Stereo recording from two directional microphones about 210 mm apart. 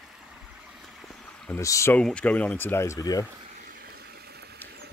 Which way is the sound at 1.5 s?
15° left (ahead or behind).